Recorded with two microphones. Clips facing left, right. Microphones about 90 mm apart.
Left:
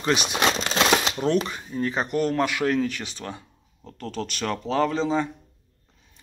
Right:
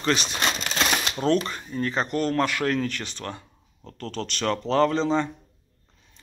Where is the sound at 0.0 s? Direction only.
15° left (ahead or behind).